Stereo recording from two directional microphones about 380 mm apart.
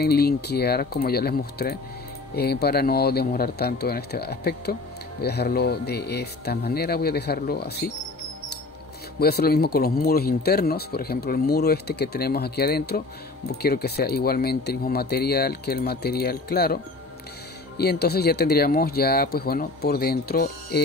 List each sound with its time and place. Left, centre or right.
0.0 s speech: left
9.2 s speech: left